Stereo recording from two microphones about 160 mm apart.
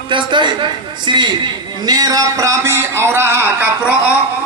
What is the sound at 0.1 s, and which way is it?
A man's voice, 30° right (ahead or behind).